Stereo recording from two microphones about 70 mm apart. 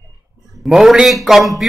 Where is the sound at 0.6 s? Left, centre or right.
Centre.